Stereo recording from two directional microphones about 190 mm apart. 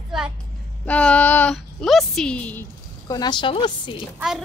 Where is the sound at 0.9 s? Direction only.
5° left (ahead or behind).